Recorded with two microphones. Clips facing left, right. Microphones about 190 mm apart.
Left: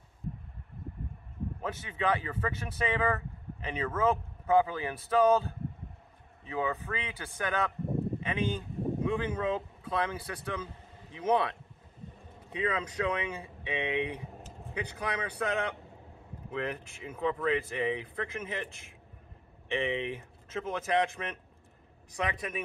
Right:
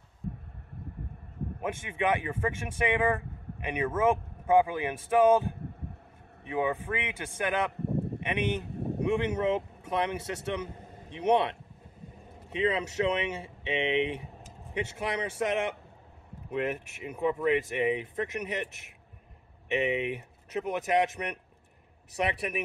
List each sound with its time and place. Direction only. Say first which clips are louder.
1.6 s a man's voice: right 3 dB; 20° right (ahead or behind)
12.4 s a sound: right 4 dB; 25° right (ahead or behind)
12.7 s speech: right 3 dB; 25° right (ahead or behind)
19.7 s speech: right 3 dB; 20° right (ahead or behind)